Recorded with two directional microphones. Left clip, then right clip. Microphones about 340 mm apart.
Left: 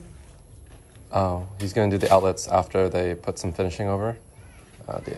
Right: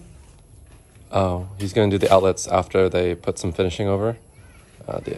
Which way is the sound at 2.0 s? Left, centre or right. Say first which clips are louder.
Right 2 dB; centre.